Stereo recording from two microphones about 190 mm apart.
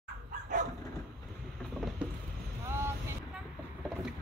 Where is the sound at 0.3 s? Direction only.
40° right (ahead or behind).